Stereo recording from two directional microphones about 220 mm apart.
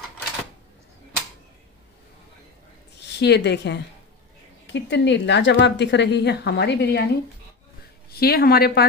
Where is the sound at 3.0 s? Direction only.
50° left (ahead or behind).